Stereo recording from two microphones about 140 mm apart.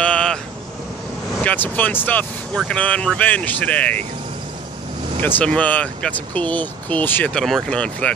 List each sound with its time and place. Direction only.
0.0 s vehicle: 5° left (ahead or behind)
1.4 s speech: 10° left (ahead or behind)
5.2 s speech: 10° left (ahead or behind)